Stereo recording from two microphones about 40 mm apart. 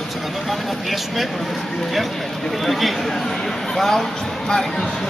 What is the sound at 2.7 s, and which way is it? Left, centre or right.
Speech, centre.